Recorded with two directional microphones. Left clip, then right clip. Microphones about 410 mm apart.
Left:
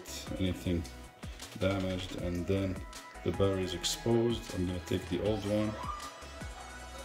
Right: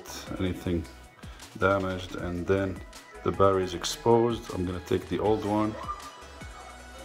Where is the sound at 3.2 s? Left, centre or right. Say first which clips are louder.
Right 8 dB; centre.